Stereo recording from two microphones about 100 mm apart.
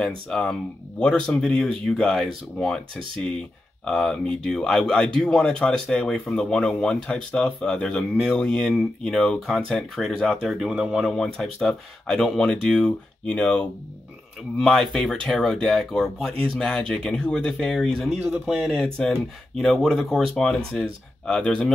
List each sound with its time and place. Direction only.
0.0 s speech: 5° left (ahead or behind)
3.8 s speech: 5° left (ahead or behind); by 11.1 s 10° right (ahead or behind)
11.1 s speech: 5° left (ahead or behind)
18.2 s speech: 10° right (ahead or behind); by 21.7 s 5° left (ahead or behind)